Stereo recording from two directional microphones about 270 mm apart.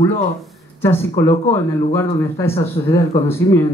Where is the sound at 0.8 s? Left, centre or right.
Centre.